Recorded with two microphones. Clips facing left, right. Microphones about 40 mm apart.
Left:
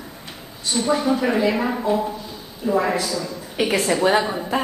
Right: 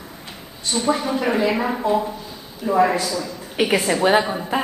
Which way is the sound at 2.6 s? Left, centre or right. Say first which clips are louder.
Right 3 dB; right.